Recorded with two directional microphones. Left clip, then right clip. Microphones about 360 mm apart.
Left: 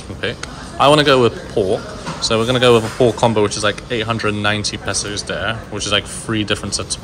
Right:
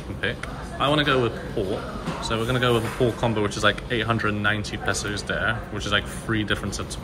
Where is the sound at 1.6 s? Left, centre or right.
Left.